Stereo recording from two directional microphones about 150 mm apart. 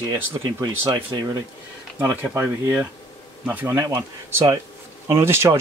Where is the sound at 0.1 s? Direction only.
25° right (ahead or behind).